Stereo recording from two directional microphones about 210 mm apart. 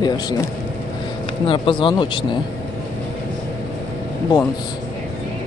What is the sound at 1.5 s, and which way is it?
Speech, 25° left (ahead or behind).